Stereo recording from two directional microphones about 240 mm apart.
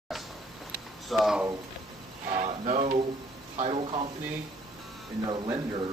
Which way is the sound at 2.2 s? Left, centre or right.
Right.